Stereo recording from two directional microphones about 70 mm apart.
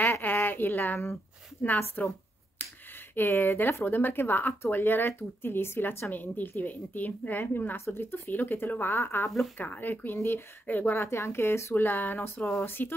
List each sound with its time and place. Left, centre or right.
0.0 s a sound: left
1.6 s speech: left
3.2 s speech: left
10.7 s speech: left
11.0 s speech: left
12.4 s speech: centre
12.6 s speech: left